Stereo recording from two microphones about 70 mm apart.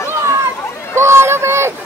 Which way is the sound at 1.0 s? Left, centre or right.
Right.